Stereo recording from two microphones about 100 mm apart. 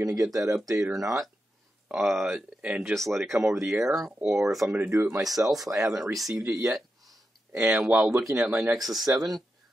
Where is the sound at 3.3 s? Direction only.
25° right (ahead or behind).